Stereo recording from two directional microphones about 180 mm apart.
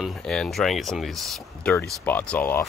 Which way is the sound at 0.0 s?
Centre (ahead or behind).